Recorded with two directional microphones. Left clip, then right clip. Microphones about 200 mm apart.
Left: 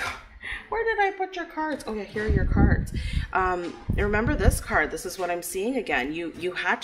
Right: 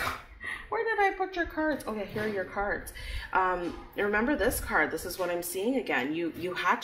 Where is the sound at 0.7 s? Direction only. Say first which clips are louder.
Left 3 dB; 20° left (ahead or behind).